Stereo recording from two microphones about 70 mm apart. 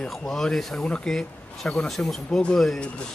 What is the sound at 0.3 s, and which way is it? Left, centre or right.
A man's voice, centre.